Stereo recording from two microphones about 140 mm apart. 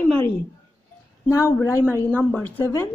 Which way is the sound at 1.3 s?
20° left (ahead or behind).